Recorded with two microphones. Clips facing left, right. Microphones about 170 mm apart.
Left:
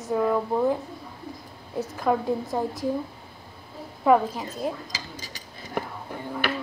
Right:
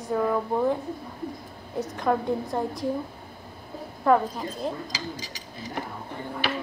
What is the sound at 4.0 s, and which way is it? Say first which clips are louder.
Speech: left 2 dB; 10° left (ahead or behind).